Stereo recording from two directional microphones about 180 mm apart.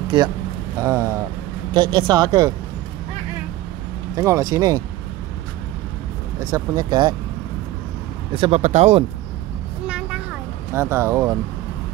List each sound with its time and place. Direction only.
0.1 s speech: 25° right (ahead or behind)
4.1 s speech: 20° right (ahead or behind)
6.4 s speech: 20° right (ahead or behind)
8.4 s speech: 35° right (ahead or behind)
9.8 s vehicle: 5° right (ahead or behind)
10.7 s speech: 15° right (ahead or behind)